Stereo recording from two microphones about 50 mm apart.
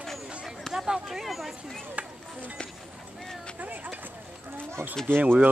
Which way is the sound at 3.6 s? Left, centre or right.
Right.